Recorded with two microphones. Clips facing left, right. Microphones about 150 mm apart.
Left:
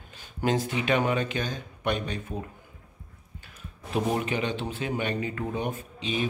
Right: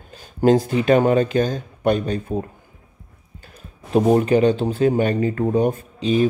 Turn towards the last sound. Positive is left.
turn(degrees=-40)  # may be behind; listen again after turning